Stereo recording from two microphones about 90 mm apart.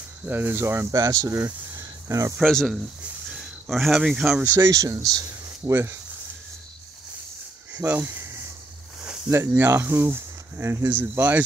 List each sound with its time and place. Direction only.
0.2 s speech: 25° right (ahead or behind)
0.9 s speech: 40° right (ahead or behind)
2.4 s speech: 5° left (ahead or behind)
3.0 s a sound: 5° right (ahead or behind)
4.5 s speech: 40° right (ahead or behind)
7.7 s speech: 15° right (ahead or behind)
8.1 s a sound: 30° right (ahead or behind)
9.6 s speech: 25° right (ahead or behind)